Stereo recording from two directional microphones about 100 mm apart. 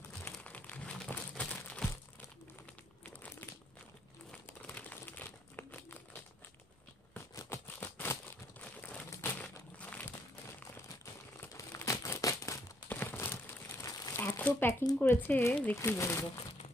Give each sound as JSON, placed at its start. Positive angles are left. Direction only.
{"t": 0.4, "sound": "crumpling", "side_deg": 15}
{"t": 3.2, "sound": "crumpling", "side_deg": 20}
{"t": 4.5, "sound": "crumpling", "side_deg": 20}
{"t": 7.3, "sound": "crumpling", "side_deg": 25}
{"t": 11.4, "sound": "crumpling", "side_deg": 30}
{"t": 12.8, "sound": "crumpling", "side_deg": 20}
{"t": 13.8, "sound": "crumpling", "side_deg": 40}
{"t": 14.1, "sound": "crumpling", "side_deg": 20}
{"t": 15.0, "sound": "speech", "side_deg": 20}